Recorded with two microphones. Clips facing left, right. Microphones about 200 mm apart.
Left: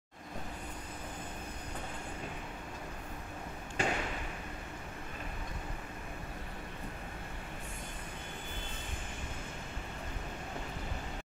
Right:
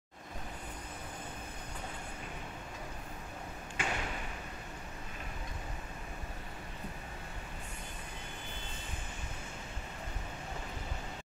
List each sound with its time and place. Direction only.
3.8 s arrow: 35° left (ahead or behind)